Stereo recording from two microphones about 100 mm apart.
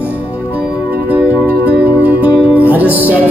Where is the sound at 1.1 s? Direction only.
15° right (ahead or behind).